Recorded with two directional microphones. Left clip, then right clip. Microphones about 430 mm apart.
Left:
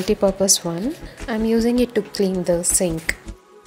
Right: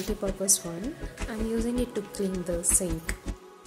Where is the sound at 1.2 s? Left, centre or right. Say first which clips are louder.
Left 12 dB; right.